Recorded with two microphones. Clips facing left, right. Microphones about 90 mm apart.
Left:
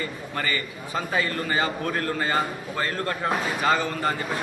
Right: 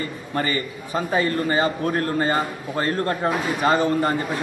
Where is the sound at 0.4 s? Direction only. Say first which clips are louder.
Right 4 dB; 30° right (ahead or behind).